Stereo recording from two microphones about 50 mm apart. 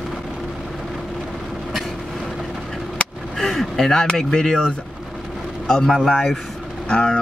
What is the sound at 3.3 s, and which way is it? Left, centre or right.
Speech, centre.